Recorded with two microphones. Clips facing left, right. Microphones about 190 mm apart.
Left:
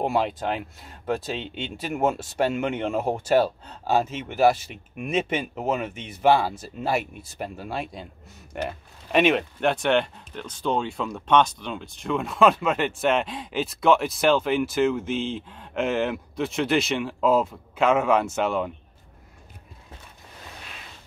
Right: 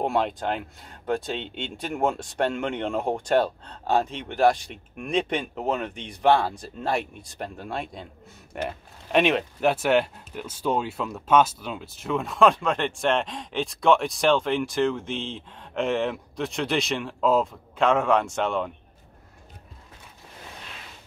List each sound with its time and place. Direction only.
0.0 s speech: centre (ahead or behind)